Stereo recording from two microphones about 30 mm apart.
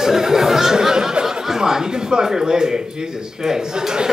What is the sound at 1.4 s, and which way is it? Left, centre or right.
A man's voice, centre.